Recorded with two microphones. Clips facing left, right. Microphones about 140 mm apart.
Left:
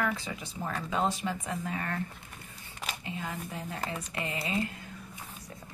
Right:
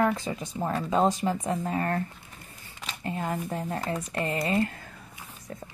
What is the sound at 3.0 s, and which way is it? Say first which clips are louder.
Speech: right 10 dB; 50° right (ahead or behind).